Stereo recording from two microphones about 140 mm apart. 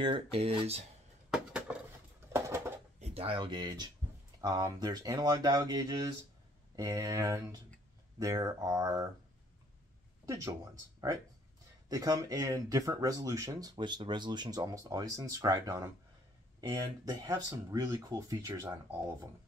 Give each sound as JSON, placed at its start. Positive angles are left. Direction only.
{"t": 0.0, "sound": "speech", "side_deg": -40}
{"t": 1.3, "sound": "a sound", "side_deg": -5}
{"t": 2.3, "sound": "a sound", "side_deg": -20}
{"t": 3.0, "sound": "speech", "side_deg": -40}
{"t": 10.2, "sound": "speech", "side_deg": -25}
{"t": 11.9, "sound": "speech", "side_deg": -25}
{"t": 17.0, "sound": "speech", "side_deg": -30}